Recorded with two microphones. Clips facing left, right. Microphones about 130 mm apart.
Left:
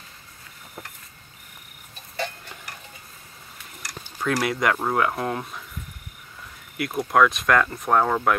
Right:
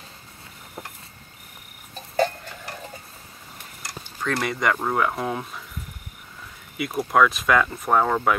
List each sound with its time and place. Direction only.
3.8 s a sound: 25° right (ahead or behind)
4.2 s speech: 5° left (ahead or behind)
6.8 s speech: centre (ahead or behind)